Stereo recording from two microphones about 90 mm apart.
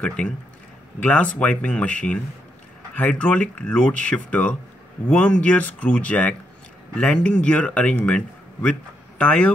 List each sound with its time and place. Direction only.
0.0 s speech: 10° left (ahead or behind)
9.2 s speech: 15° left (ahead or behind)